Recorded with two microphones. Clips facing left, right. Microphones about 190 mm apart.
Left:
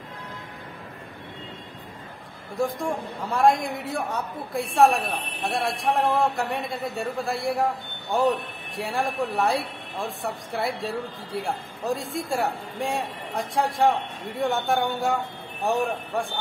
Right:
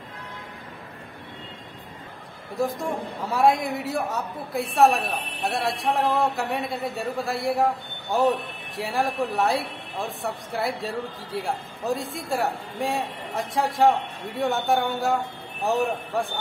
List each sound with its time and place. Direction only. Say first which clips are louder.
3.3 s a woman's voice: even; 5° right (ahead or behind)